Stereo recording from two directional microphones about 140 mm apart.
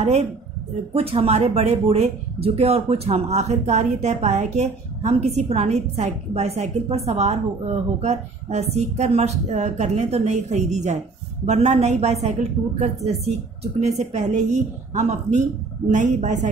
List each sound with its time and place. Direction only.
0.9 s a woman's voice: 45° right (ahead or behind); by 16.3 s 60° right (ahead or behind)